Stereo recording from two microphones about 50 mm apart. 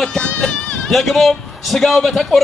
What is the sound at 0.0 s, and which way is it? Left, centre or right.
Goat, centre.